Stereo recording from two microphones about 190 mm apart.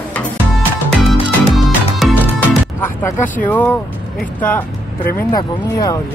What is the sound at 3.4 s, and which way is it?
Speech, 10° left (ahead or behind).